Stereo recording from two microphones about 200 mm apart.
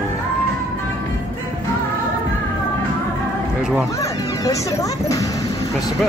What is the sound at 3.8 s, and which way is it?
A child's voice, 15° left (ahead or behind).